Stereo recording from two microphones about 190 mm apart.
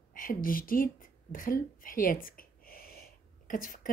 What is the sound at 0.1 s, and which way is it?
Speech, 45° left (ahead or behind).